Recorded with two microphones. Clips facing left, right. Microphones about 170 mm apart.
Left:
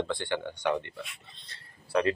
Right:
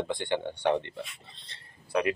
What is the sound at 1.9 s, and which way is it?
Speech, 15° right (ahead or behind).